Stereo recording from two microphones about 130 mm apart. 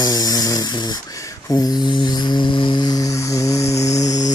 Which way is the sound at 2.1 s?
35° left (ahead or behind).